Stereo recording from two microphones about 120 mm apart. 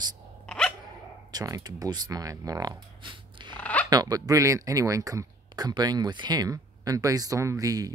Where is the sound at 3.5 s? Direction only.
10° left (ahead or behind).